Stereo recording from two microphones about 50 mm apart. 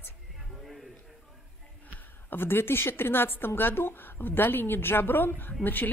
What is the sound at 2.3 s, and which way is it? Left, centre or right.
A woman's voice, left.